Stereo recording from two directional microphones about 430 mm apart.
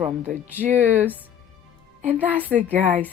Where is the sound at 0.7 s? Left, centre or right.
Centre.